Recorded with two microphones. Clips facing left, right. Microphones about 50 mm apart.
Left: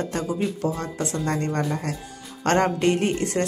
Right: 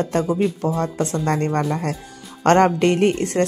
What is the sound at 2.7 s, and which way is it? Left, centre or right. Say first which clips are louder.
Speech: right 4 dB; right.